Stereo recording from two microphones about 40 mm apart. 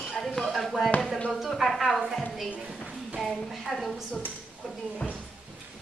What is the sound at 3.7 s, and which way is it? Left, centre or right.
Speech, centre.